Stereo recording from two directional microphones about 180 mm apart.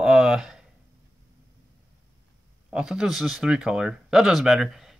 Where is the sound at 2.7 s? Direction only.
5° right (ahead or behind).